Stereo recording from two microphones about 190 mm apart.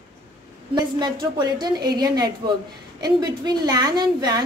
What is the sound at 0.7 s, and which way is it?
A woman's voice, 20° right (ahead or behind).